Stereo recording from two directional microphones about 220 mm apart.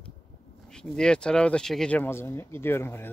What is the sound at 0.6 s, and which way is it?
Speech, 5° left (ahead or behind).